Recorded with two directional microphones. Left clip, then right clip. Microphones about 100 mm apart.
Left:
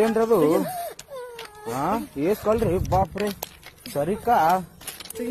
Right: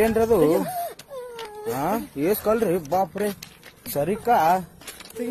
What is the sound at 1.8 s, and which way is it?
Speech, 35° right (ahead or behind).